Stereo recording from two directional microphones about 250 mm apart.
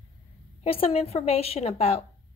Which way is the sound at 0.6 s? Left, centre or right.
Left.